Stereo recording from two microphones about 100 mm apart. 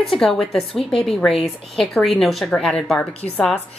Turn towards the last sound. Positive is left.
turn(degrees=5)  # may be behind; listen again after turning